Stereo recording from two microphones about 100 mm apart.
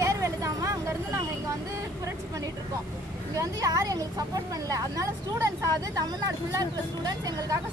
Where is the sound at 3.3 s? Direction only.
35° right (ahead or behind).